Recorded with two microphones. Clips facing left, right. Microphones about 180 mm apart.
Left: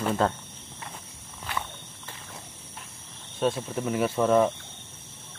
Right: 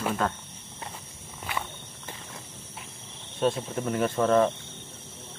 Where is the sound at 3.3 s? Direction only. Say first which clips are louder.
Even; centre (ahead or behind).